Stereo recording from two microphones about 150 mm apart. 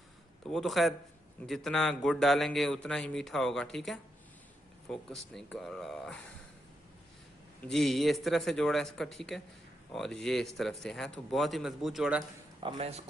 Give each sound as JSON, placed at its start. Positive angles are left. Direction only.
{"t": 0.5, "sound": "speech", "side_deg": 0}
{"t": 7.6, "sound": "speech", "side_deg": 0}
{"t": 12.7, "sound": "speech", "side_deg": -45}